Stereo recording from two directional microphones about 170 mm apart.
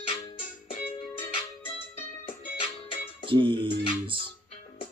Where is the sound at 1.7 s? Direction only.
35° left (ahead or behind).